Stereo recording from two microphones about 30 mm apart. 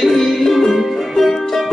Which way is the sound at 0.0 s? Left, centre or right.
Centre.